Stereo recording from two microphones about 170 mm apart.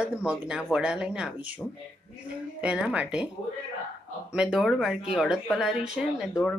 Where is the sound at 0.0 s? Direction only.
5° right (ahead or behind).